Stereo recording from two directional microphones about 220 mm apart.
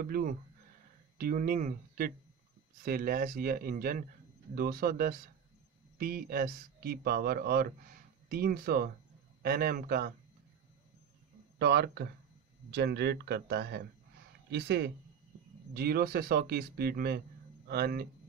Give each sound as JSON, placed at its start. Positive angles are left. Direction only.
{"t": 0.0, "sound": "speech", "side_deg": -40}
{"t": 11.5, "sound": "speech", "side_deg": -50}